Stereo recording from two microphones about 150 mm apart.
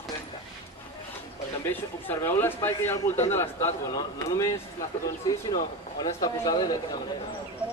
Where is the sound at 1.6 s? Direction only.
15° left (ahead or behind).